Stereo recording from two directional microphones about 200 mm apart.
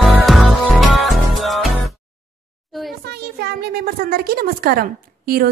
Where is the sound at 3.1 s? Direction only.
55° right (ahead or behind).